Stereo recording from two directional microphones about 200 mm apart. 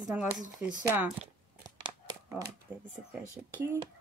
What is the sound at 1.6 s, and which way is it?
Crumpling, 20° right (ahead or behind).